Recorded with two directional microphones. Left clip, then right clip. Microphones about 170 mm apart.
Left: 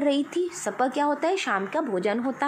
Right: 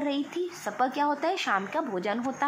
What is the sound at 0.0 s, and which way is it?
A woman's voice, 30° left (ahead or behind).